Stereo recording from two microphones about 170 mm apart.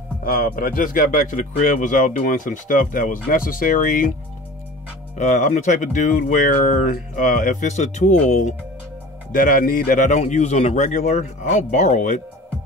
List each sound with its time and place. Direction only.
0.2 s speech: 60° left (ahead or behind)
5.1 s speech: 45° left (ahead or behind)